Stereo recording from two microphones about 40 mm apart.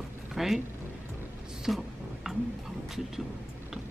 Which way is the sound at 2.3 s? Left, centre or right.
Centre.